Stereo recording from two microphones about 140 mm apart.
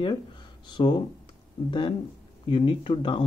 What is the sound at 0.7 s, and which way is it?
Speech, 30° left (ahead or behind).